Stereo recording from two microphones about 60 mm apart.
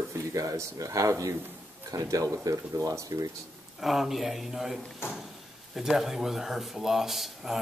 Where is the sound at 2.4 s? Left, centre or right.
Right.